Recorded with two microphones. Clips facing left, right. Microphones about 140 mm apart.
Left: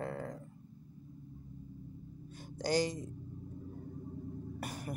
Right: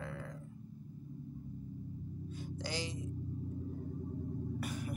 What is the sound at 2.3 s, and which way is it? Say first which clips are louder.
Music: left 9 dB; 45° left (ahead or behind).